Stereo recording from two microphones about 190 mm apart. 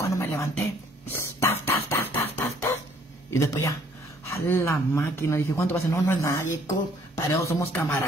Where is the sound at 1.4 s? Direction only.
15° left (ahead or behind).